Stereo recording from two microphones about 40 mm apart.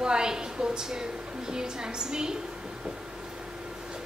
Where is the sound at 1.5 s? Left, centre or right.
Centre.